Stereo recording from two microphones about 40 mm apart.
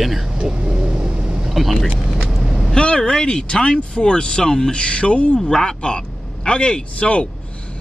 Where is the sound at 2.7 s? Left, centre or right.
Left.